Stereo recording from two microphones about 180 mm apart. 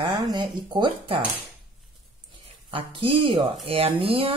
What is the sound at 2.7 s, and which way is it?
Speech, 30° right (ahead or behind).